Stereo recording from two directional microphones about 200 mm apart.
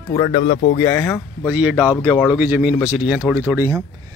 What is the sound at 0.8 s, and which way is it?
Speech, 10° left (ahead or behind).